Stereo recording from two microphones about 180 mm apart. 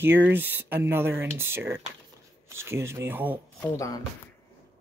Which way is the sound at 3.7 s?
20° left (ahead or behind).